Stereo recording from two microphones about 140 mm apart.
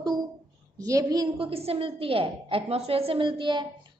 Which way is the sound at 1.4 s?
45° right (ahead or behind).